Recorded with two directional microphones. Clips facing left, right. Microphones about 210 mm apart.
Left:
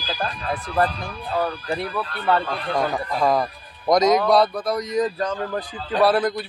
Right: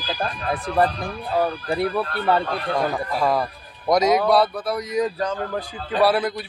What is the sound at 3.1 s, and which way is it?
Speech, 5° right (ahead or behind).